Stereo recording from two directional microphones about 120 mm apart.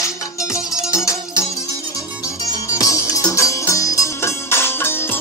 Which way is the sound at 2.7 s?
25° left (ahead or behind).